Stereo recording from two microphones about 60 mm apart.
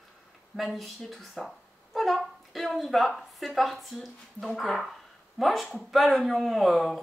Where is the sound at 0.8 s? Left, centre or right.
Centre.